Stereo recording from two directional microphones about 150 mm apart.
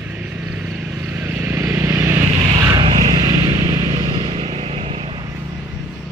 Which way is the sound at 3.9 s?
35° right (ahead or behind).